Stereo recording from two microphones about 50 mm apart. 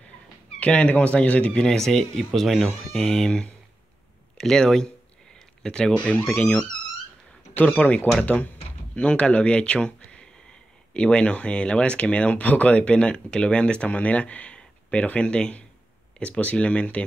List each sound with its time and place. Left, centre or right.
0.6 s speech: left
1.7 s speech: centre
6.3 s speech: left
7.6 s speech: left